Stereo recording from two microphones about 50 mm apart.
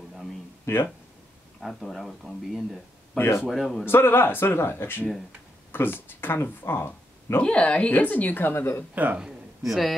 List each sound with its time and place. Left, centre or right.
0.7 s speech: left
1.6 s speech: centre
3.2 s speech: left
3.4 s speech: centre
3.8 s speech: left
7.4 s speech: left
7.9 s a woman's voice: left
8.5 s speech: left
8.9 s speech: right
9.7 s speech: centre